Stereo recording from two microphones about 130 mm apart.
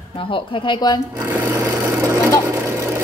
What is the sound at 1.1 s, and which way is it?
Filing, 20° right (ahead or behind).